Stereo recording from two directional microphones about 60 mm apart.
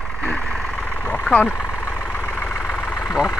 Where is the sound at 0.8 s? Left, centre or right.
Left.